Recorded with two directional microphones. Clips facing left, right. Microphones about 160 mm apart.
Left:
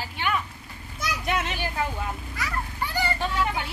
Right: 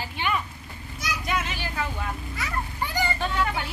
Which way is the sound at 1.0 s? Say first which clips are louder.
Left 1 dB; 60° left (ahead or behind).